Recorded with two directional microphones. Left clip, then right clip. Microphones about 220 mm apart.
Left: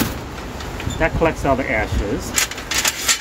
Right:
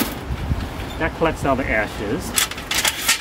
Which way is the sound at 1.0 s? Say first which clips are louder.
Left 4 dB; 25° left (ahead or behind).